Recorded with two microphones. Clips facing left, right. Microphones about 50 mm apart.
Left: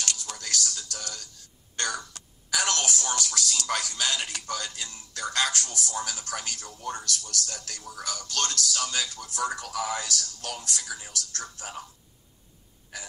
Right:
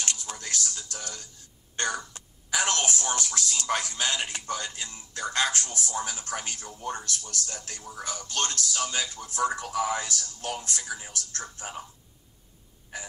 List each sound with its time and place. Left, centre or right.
0.0 s speech: right
12.9 s gasp: right